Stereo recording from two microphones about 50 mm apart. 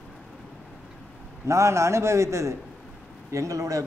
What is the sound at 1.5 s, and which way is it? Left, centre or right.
A man's voice, right.